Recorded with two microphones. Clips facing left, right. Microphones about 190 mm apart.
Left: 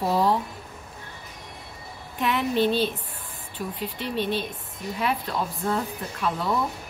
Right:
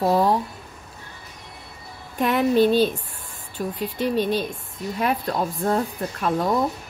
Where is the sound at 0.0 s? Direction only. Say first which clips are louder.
Right 4 dB; 50° right (ahead or behind).